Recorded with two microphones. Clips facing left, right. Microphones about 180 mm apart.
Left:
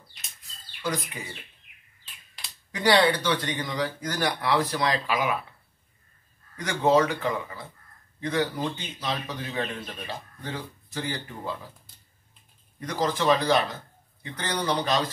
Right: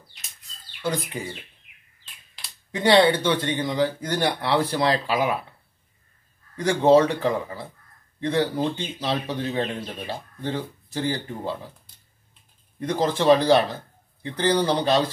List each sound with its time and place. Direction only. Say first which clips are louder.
0.8 s speech: right 4 dB; 30° right (ahead or behind)
2.7 s speech: right 4 dB; 25° right (ahead or behind)
6.5 s speech: right 5 dB; 30° right (ahead or behind)
12.8 s speech: right 5 dB; 30° right (ahead or behind)